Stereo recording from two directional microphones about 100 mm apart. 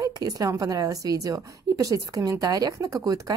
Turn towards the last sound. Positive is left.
turn(degrees=-35)  # may be behind; listen again after turning